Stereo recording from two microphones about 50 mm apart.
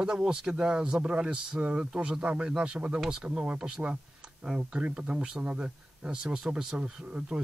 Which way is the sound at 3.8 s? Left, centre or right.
Centre.